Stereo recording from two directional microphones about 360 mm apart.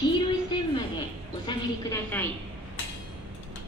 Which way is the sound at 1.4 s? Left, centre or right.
Centre.